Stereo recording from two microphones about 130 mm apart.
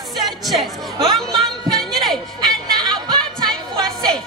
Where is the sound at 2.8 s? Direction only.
35° right (ahead or behind).